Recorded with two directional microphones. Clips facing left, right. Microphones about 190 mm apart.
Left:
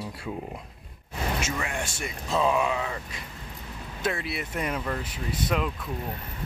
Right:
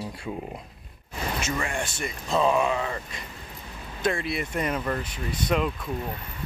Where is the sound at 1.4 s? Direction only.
5° left (ahead or behind).